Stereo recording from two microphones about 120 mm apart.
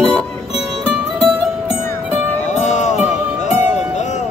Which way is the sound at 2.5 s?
80° left.